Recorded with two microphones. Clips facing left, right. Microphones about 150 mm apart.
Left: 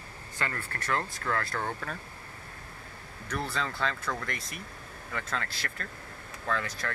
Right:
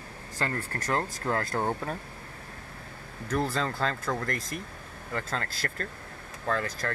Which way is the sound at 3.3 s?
40° right (ahead or behind).